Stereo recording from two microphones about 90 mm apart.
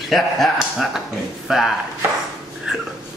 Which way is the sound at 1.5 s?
5° right (ahead or behind).